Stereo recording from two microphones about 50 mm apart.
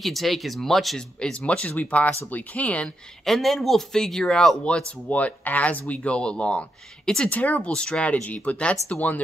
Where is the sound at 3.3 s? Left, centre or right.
Centre.